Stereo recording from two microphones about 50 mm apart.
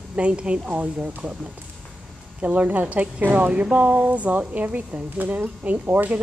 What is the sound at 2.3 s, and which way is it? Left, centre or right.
Speech, right.